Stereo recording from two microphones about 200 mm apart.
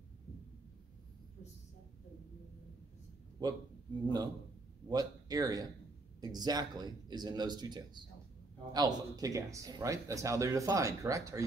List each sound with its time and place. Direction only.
3.4 s speech: 20° right (ahead or behind)
4.8 s speech: 20° right (ahead or behind)